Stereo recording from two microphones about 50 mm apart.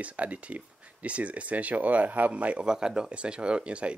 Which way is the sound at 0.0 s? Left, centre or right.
Right.